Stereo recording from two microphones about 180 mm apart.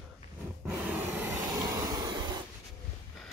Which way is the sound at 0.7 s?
10° right (ahead or behind).